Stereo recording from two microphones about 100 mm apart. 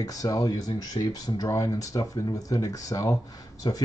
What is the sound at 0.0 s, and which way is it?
Speech, 35° left (ahead or behind).